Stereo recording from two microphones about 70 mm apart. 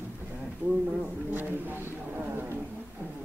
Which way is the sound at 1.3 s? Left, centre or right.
Right.